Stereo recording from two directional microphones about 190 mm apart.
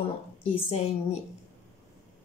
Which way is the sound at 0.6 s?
35° left (ahead or behind).